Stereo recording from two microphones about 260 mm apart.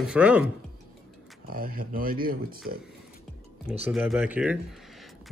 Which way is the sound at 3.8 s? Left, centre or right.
Centre.